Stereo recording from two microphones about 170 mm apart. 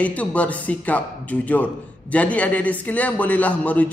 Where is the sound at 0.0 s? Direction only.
10° left (ahead or behind).